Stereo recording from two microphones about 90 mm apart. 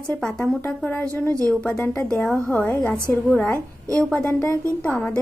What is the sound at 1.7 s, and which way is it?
A woman's voice, 25° left (ahead or behind).